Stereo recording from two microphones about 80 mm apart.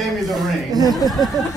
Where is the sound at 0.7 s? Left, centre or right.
Right.